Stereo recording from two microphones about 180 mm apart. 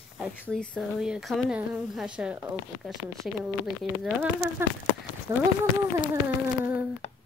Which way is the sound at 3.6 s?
Centre (ahead or behind).